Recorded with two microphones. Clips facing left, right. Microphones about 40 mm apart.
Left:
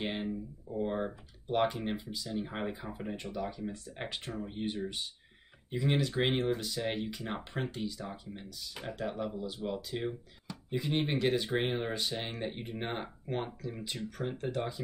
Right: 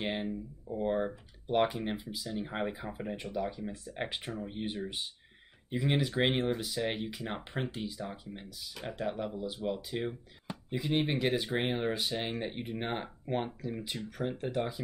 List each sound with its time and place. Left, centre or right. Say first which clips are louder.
0.0 s speech: right 1 dB; centre